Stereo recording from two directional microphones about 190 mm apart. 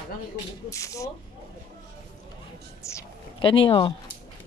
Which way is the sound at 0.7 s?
15° left (ahead or behind).